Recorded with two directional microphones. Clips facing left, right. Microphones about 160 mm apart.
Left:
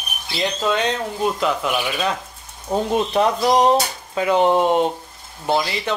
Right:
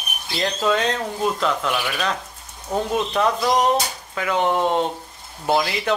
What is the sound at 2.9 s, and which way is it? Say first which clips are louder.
Speech: left 3 dB; 25° left (ahead or behind).